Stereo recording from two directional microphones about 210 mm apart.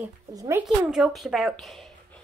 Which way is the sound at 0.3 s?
15° right (ahead or behind).